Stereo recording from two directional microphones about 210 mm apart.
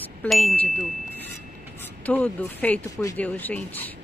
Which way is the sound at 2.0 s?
10° left (ahead or behind).